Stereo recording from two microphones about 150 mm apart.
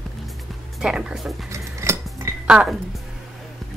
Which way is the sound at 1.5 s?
20° right (ahead or behind).